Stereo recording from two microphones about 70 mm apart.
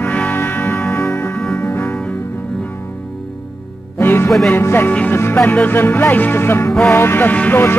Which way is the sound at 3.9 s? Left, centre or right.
Left.